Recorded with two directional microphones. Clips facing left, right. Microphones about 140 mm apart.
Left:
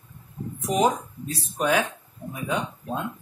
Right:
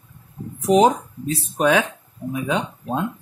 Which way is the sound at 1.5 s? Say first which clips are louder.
Right 5 dB; 90° right.